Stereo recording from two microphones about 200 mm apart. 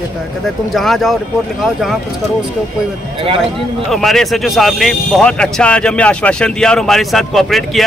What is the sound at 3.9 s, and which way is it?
Speech, centre (ahead or behind).